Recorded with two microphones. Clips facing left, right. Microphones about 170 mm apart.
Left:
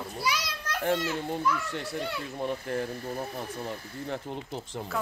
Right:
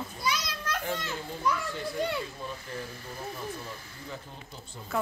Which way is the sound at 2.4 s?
60° left (ahead or behind).